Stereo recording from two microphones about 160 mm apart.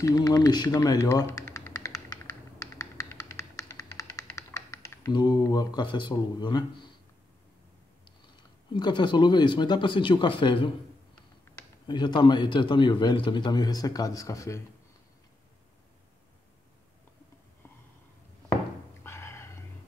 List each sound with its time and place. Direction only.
0.0 s a man's voice: 25° left (ahead or behind)
1.5 s a sound: 20° left (ahead or behind)
2.6 s typing: 20° left (ahead or behind)
8.7 s a man's voice: 30° left (ahead or behind)
11.9 s a man's voice: 30° left (ahead or behind)
19.0 s a sound: 15° left (ahead or behind)